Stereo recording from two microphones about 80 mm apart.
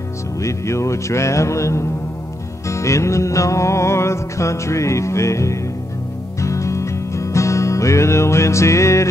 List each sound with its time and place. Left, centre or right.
0.4 s music: left